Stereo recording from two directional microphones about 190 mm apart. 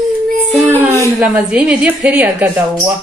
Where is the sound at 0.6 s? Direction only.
10° right (ahead or behind).